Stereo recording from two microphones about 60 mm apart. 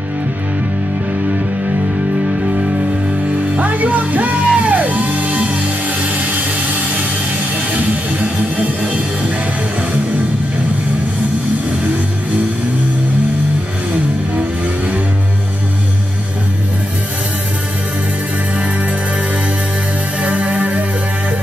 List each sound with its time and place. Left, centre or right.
3.5 s music: right
20.2 s music: right